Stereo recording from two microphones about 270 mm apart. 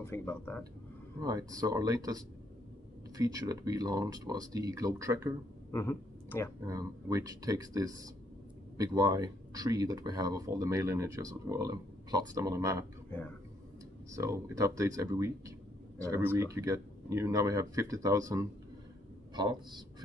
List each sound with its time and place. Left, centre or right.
0.0 s speech: centre
1.2 s speech: centre
5.7 s speech: centre
6.6 s speech: centre
14.1 s speech: centre